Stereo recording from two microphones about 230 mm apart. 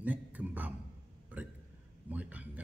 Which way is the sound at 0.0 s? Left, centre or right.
Centre.